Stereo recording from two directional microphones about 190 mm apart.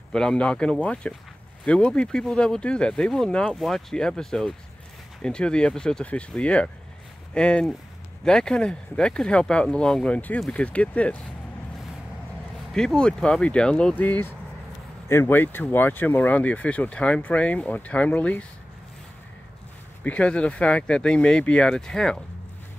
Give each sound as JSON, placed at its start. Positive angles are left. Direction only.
{"t": 0.1, "sound": "speech", "side_deg": 5}
{"t": 12.7, "sound": "speech", "side_deg": 5}
{"t": 20.0, "sound": "speech", "side_deg": 5}